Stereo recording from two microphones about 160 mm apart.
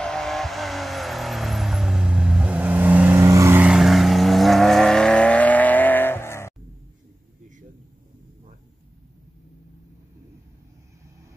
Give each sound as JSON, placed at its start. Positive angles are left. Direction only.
{"t": 0.0, "sound": "vehicle", "side_deg": 5}